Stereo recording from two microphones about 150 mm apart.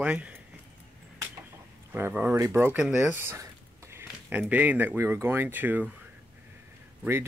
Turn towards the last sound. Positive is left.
turn(degrees=-15)  # may be behind; listen again after turning